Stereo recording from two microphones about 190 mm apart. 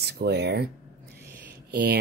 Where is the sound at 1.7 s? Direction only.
55° right (ahead or behind).